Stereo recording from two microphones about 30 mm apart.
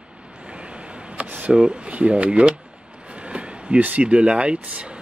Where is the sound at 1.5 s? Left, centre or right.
Right.